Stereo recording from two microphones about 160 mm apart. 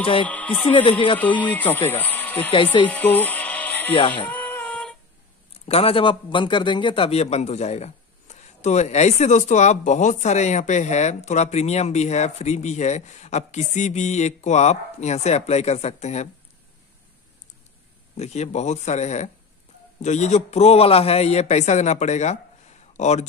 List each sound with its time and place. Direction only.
0.0 s speech: 35° left (ahead or behind)
0.3 s speech: 10° left (ahead or behind)
0.8 s speech: 35° left (ahead or behind)
1.1 s speech: 10° left (ahead or behind)
2.5 s speech: 30° left (ahead or behind)
2.9 s music: 10° left (ahead or behind)
4.1 s child singing: 10° left (ahead or behind)
5.7 s a man's voice: 35° left (ahead or behind)
18.1 s a man's voice: 45° left (ahead or behind)